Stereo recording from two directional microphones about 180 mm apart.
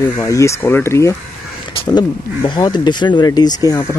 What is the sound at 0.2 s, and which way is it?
Speech, 15° left (ahead or behind).